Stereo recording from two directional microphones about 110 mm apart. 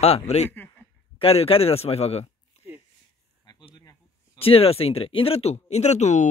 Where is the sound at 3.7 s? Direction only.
30° left (ahead or behind).